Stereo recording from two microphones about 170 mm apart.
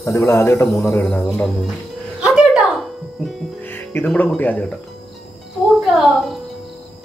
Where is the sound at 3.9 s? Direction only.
10° left (ahead or behind).